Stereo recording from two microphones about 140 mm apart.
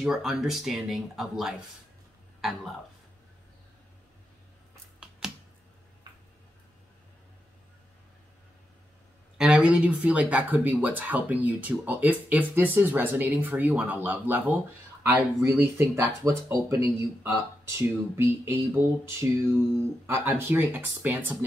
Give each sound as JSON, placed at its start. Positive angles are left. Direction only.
{"t": 0.0, "sound": "speech", "side_deg": 0}
{"t": 9.4, "sound": "speech", "side_deg": -10}